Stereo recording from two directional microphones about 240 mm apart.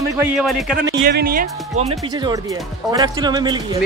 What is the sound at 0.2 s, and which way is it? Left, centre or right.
Speech, centre.